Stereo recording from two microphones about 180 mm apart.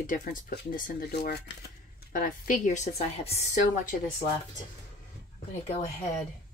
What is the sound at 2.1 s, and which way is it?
A woman's voice, 50° left (ahead or behind).